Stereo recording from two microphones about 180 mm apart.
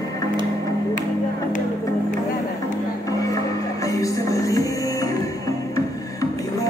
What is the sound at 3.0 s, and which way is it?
Music, 20° left (ahead or behind).